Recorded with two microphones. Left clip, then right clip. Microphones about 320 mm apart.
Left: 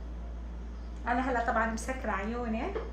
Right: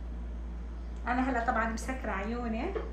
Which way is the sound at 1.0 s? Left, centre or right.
Left.